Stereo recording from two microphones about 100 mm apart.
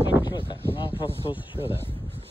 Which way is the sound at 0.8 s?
60° left (ahead or behind).